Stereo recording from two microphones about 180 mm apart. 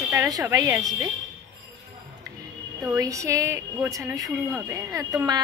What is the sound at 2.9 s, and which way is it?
A woman's voice, 20° right (ahead or behind).